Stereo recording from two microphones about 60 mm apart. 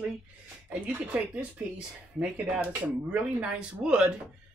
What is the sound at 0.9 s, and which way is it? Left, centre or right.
Speech, right.